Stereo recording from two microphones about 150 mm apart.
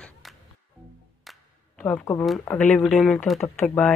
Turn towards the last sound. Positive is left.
turn(degrees=15)  # may be behind; listen again after turning